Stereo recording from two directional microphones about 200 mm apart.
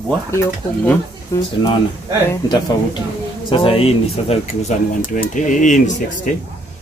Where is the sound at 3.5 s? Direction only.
25° left (ahead or behind).